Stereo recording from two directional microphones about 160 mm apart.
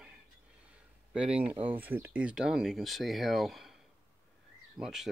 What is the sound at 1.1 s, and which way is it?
Speech, 5° right (ahead or behind).